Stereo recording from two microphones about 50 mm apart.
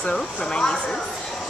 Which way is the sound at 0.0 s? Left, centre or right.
Centre.